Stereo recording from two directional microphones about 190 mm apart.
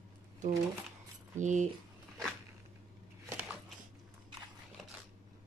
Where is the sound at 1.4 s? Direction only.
40° right (ahead or behind).